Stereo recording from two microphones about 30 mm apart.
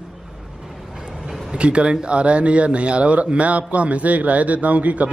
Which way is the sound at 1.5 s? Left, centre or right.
Right.